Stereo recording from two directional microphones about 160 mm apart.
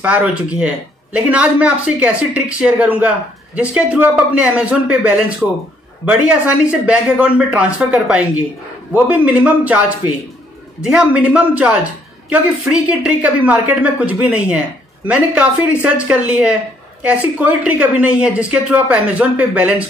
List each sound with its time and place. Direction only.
0.0 s speech: 10° right (ahead or behind)